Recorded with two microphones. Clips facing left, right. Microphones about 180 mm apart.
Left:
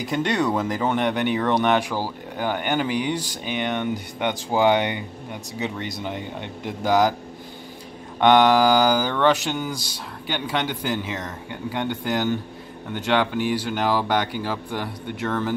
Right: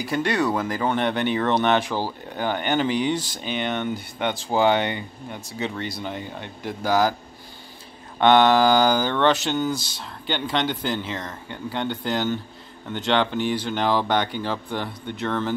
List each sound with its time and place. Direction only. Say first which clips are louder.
0.0 s speech: even; 20° left (ahead or behind)
8.2 s speech: even; 10° left (ahead or behind)